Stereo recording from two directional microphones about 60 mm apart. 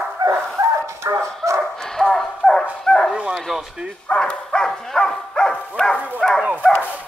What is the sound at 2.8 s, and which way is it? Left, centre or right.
Dog, centre.